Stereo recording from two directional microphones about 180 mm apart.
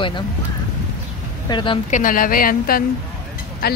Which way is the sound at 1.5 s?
25° left (ahead or behind).